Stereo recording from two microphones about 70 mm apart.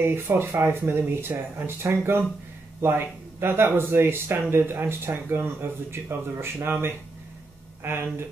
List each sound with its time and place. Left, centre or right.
0.0 s speech: right
7.8 s speech: right